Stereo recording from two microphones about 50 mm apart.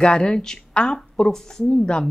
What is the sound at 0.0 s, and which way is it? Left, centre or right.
A woman's voice, centre.